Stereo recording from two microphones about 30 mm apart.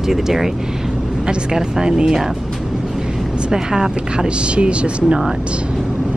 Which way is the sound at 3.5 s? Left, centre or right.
Centre.